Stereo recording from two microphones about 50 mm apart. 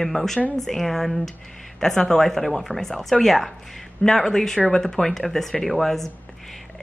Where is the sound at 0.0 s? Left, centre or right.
Centre.